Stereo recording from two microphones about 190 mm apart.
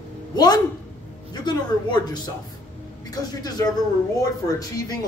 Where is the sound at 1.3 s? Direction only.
20° left (ahead or behind).